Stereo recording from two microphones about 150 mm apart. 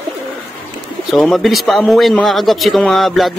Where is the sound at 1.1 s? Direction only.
Centre (ahead or behind).